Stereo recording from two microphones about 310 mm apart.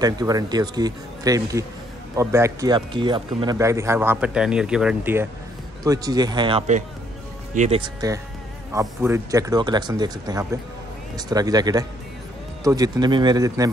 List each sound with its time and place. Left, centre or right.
0.0 s speech: centre